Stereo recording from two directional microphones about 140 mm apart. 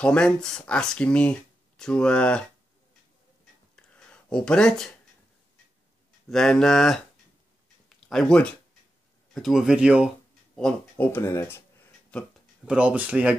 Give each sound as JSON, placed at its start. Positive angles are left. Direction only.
{"t": 0.0, "sound": "speech", "side_deg": 5}
{"t": 3.7, "sound": "a sound", "side_deg": 5}
{"t": 6.2, "sound": "speech", "side_deg": 5}
{"t": 10.5, "sound": "speech", "side_deg": 10}
{"t": 12.6, "sound": "speech", "side_deg": -10}